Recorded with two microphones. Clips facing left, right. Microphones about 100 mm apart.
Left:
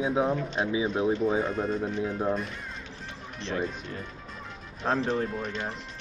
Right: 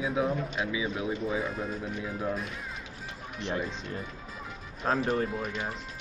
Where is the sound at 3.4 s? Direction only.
30° left (ahead or behind).